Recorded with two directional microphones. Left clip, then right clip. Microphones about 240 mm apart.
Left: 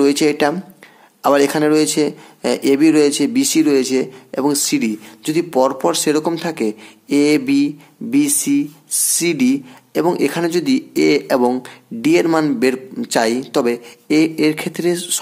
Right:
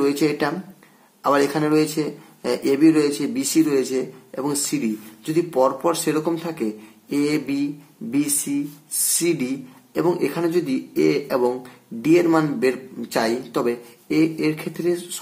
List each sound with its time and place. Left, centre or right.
0.0 s speech: left